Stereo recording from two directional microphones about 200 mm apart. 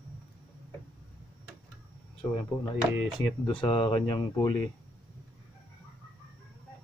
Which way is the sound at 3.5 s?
25° left (ahead or behind).